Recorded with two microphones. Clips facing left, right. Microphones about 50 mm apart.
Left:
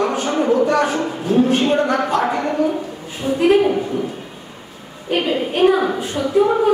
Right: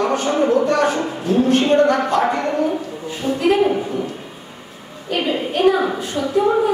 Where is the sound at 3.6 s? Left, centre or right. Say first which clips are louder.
Left 1 dB; centre.